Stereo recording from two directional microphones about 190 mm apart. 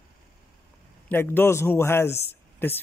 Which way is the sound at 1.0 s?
10° left (ahead or behind).